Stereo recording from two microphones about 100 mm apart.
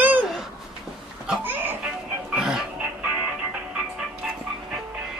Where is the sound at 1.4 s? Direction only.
20° right (ahead or behind).